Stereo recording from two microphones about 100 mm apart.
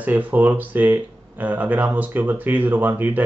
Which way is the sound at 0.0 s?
15° right (ahead or behind).